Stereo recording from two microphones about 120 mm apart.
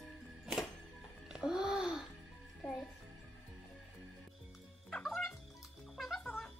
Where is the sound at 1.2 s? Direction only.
5° right (ahead or behind).